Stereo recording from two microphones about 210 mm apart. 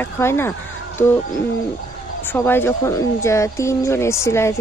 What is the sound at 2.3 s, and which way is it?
Speech, 10° left (ahead or behind).